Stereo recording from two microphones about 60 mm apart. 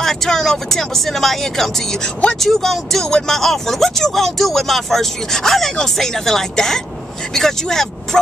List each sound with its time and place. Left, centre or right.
0.0 s speech: centre